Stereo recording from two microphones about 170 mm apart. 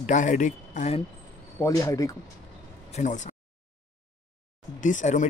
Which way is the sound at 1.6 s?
20° left (ahead or behind).